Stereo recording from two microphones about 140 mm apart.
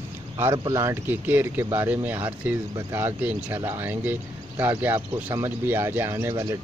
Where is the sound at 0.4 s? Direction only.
20° right (ahead or behind).